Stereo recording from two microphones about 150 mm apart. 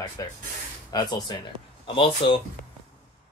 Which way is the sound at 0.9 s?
30° left (ahead or behind).